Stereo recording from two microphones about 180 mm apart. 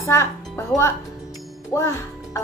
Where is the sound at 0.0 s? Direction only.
15° left (ahead or behind).